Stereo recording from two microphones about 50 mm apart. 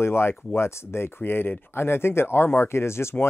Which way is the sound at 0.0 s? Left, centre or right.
Left.